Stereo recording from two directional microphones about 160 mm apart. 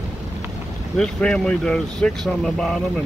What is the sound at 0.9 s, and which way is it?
Speech, 5° left (ahead or behind).